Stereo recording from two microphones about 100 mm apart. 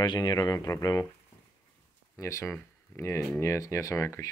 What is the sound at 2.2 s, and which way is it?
Speech, 30° left (ahead or behind).